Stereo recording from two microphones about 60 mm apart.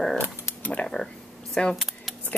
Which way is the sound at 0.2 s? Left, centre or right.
Left.